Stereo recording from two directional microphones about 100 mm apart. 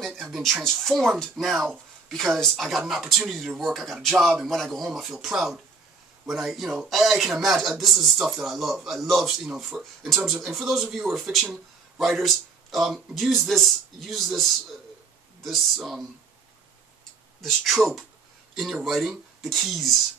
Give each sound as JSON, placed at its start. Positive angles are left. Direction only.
{"t": 0.0, "sound": "speech", "side_deg": 0}
{"t": 17.4, "sound": "speech", "side_deg": 0}